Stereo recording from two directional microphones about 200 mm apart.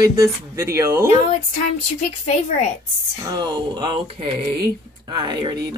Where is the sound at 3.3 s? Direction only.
20° right (ahead or behind).